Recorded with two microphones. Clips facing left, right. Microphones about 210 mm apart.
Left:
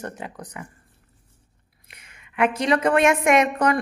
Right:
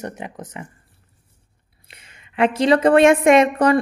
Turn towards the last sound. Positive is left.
turn(degrees=-30)  # may be behind; listen again after turning